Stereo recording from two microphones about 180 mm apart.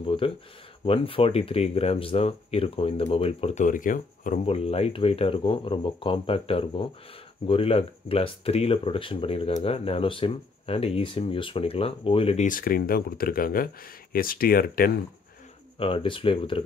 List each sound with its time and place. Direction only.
0.0 s a sound: 30° left (ahead or behind)
0.8 s speech: 30° left (ahead or behind); by 4.4 s 45° left (ahead or behind)
4.5 s speech: 35° left (ahead or behind)
12.4 s speech: 50° left (ahead or behind)
15.8 s speech: 30° left (ahead or behind)